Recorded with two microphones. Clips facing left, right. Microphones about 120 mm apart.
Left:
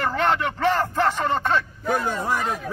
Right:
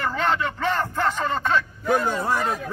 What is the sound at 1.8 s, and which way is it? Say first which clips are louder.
Speech: right 3 dB; 10° right (ahead or behind).